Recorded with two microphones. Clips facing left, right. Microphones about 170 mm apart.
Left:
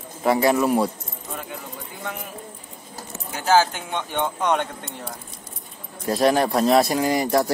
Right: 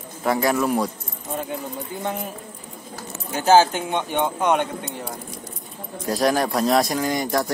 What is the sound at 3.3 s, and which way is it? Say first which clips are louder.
Speech: right 3 dB; 25° right (ahead or behind).